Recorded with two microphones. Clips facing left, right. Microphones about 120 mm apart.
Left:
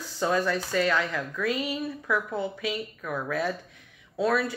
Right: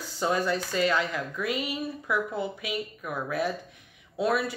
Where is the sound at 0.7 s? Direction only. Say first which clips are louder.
Left 1 dB; 15° right (ahead or behind).